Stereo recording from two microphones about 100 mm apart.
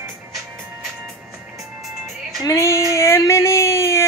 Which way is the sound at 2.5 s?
30° left (ahead or behind).